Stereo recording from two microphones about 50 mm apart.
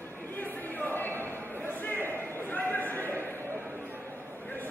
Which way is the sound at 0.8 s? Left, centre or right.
Left.